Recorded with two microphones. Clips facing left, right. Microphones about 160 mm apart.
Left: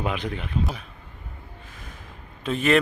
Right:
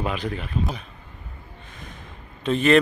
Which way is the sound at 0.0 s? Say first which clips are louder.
Right 1 dB; 15° left (ahead or behind).